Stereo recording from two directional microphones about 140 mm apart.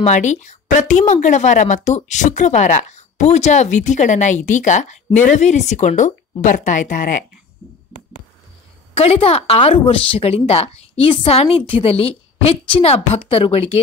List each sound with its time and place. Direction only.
0.0 s a woman's voice: 55° left (ahead or behind)
8.9 s a woman's voice: 45° left (ahead or behind)